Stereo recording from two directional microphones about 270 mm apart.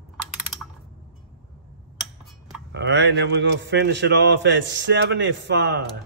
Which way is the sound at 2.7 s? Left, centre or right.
Right.